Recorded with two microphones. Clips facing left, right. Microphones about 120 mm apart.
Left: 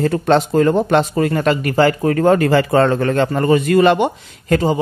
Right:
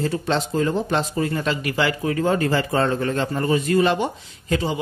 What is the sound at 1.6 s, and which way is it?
Speech, 45° left (ahead or behind).